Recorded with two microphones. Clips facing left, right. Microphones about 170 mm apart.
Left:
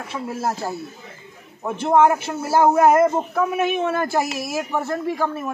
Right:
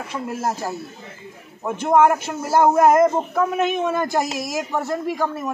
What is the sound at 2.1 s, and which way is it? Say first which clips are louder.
Speech: left 1 dB; 15° right (ahead or behind).